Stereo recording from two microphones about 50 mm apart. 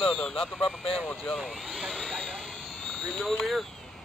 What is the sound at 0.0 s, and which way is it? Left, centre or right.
Vehicle, centre.